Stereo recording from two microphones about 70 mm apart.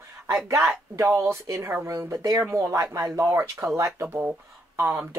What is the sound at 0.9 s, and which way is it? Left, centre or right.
A man's voice, right.